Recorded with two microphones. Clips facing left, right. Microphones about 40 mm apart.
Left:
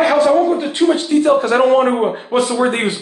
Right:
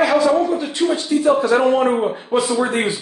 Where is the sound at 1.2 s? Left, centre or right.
Left.